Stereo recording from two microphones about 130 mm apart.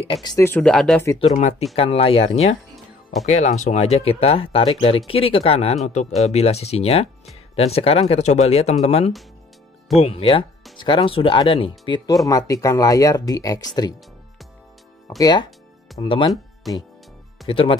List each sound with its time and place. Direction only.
0.6 s speech: 5° left (ahead or behind)
1.2 s speech: 60° left (ahead or behind)
1.8 s speech: 50° left (ahead or behind)
2.7 s music: centre (ahead or behind)
3.3 s speech: 60° left (ahead or behind)
5.9 s speech: 60° left (ahead or behind)
10.8 s speech: 35° left (ahead or behind)
12.3 s speech: 25° left (ahead or behind)
15.0 s speech: 30° left (ahead or behind)
16.0 s speech: 40° left (ahead or behind)
16.6 s speech: centre (ahead or behind)
17.5 s speech: 45° left (ahead or behind)